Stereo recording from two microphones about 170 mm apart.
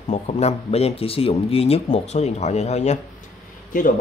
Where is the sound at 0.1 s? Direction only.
40° left (ahead or behind).